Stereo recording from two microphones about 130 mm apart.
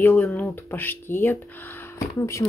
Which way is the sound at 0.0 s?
15° left (ahead or behind).